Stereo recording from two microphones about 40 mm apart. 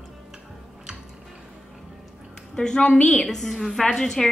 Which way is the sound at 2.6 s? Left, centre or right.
Centre.